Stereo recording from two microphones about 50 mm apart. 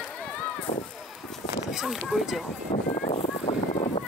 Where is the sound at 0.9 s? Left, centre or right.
Centre.